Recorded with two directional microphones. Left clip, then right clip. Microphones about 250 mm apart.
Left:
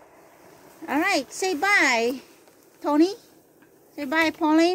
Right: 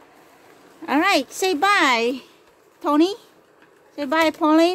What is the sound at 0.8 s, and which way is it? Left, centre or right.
Speech, centre.